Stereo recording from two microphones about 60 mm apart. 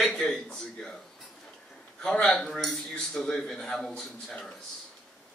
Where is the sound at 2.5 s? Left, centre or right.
Centre.